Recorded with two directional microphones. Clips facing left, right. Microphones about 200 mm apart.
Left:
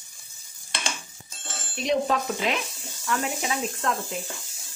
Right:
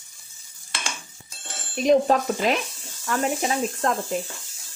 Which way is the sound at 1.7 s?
45° right (ahead or behind).